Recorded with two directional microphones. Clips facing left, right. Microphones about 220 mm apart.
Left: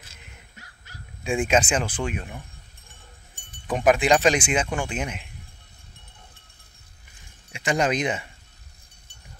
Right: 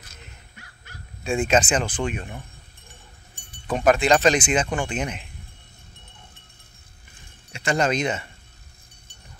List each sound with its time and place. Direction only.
0.6 s dog: 40° left (ahead or behind)
1.2 s speech: 15° left (ahead or behind)
3.6 s speech: 15° left (ahead or behind)
7.5 s speech: 15° left (ahead or behind)